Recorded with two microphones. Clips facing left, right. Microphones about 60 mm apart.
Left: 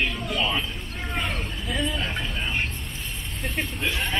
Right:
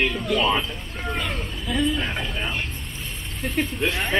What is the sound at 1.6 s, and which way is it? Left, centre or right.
Speech, centre.